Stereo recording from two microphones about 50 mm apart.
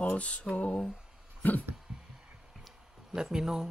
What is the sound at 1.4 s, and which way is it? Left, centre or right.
Speech, left.